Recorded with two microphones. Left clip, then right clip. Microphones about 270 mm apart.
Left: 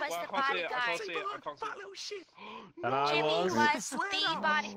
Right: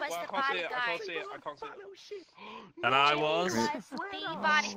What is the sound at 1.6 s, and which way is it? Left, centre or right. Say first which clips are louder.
Speech: left 5 dB; left.